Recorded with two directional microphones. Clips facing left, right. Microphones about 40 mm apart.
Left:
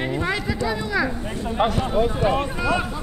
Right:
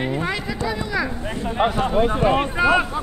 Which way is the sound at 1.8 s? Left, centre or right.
Right.